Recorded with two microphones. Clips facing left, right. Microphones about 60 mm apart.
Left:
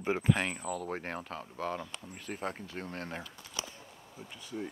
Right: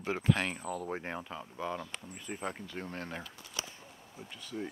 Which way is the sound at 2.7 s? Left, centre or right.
Right.